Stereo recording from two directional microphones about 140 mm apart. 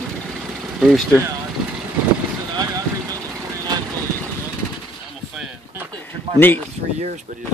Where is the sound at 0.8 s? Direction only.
Centre (ahead or behind).